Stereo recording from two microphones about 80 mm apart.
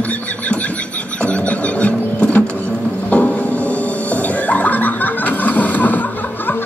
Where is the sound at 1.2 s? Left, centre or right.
Centre.